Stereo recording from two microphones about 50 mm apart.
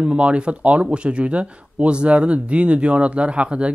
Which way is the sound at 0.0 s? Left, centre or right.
Right.